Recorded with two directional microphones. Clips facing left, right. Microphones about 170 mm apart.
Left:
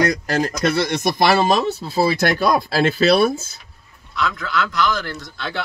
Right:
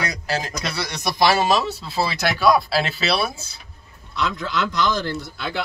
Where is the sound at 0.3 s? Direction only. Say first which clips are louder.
Left 7 dB; 50° left (ahead or behind).